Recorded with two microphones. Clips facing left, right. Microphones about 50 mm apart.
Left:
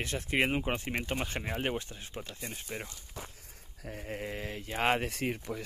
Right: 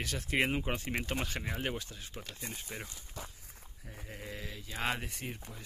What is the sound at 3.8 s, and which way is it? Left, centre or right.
Speech, left.